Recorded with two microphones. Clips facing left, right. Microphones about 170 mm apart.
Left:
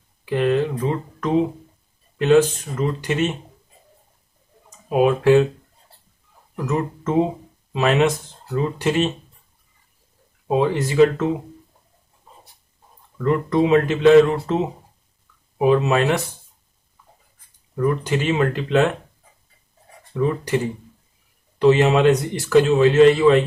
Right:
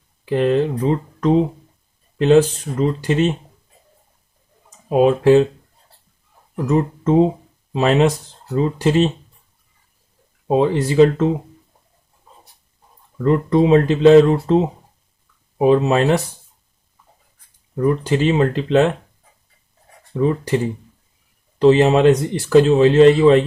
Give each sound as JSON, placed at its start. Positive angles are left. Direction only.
{"t": 0.2, "sound": "speech", "side_deg": -35}
{"t": 4.8, "sound": "speech", "side_deg": -30}
{"t": 6.5, "sound": "speech", "side_deg": -30}
{"t": 10.5, "sound": "speech", "side_deg": -35}
{"t": 13.2, "sound": "speech", "side_deg": -30}
{"t": 17.7, "sound": "speech", "side_deg": -30}
{"t": 20.2, "sound": "speech", "side_deg": -30}